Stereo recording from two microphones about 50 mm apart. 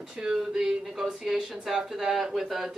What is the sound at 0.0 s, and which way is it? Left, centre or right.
Speech, centre.